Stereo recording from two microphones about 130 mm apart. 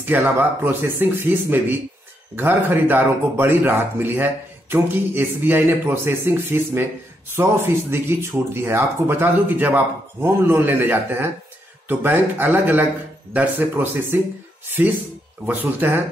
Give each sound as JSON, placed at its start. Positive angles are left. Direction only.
{"t": 0.0, "sound": "speech", "side_deg": -15}
{"t": 15.4, "sound": "speech", "side_deg": -15}